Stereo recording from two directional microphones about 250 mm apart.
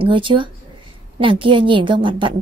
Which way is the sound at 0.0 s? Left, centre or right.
Centre.